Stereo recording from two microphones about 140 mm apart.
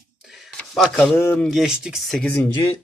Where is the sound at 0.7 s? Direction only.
5° left (ahead or behind).